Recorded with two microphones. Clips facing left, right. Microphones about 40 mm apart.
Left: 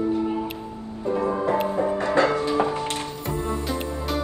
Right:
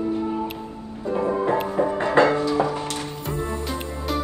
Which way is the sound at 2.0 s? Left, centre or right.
Right.